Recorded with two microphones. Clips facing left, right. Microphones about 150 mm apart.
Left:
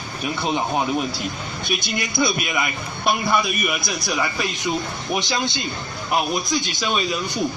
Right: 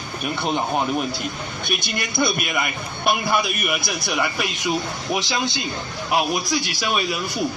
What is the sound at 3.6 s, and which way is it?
Speech, centre (ahead or behind).